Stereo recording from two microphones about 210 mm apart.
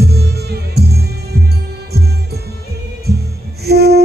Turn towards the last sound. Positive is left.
turn(degrees=-50)  # may be behind; listen again after turning